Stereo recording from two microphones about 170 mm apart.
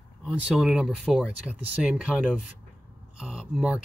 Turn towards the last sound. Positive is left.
turn(degrees=-5)  # may be behind; listen again after turning